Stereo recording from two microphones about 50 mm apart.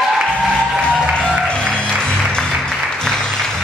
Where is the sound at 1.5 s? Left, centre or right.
Centre.